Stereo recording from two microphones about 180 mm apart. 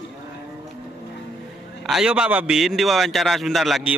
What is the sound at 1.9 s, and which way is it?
A man's voice, 5° right (ahead or behind).